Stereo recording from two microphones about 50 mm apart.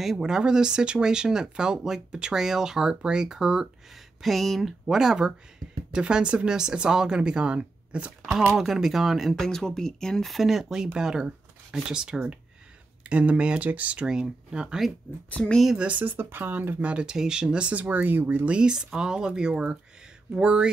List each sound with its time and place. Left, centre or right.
0.0 s speech: centre
4.2 s speech: centre; by 8.4 s right
8.5 s speech: centre
9.5 s speech: centre
10.2 s speech: centre; by 14.0 s right
14.0 s speech: centre
15.3 s speech: centre
16.0 s speech: right
16.8 s speech: centre
17.8 s speech: right
18.5 s speech: centre